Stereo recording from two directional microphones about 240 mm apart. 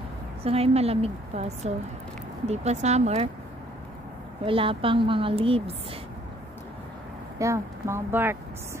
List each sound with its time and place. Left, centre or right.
0.4 s a woman's voice: right
4.5 s a woman's voice: right
7.3 s speech: centre